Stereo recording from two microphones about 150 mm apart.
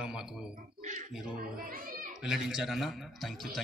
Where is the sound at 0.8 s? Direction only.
55° right (ahead or behind).